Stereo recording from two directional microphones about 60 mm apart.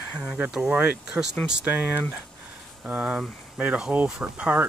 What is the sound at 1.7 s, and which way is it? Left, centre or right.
Speech, right.